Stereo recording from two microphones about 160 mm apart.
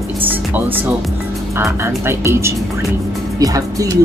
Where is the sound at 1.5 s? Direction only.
15° right (ahead or behind).